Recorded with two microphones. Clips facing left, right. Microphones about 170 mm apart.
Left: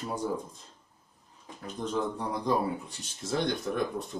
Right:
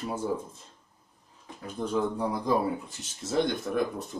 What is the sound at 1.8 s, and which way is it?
Speech, 10° right (ahead or behind).